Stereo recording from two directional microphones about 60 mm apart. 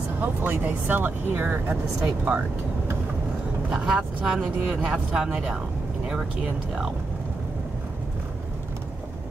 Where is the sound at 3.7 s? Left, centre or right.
Centre.